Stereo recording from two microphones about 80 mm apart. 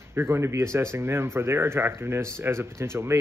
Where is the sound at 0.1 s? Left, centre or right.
Right.